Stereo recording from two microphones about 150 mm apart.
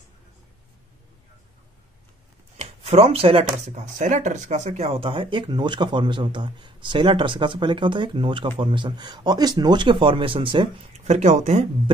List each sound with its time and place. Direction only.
2.5 s speech: 45° right (ahead or behind)
11.1 s speech: 50° right (ahead or behind)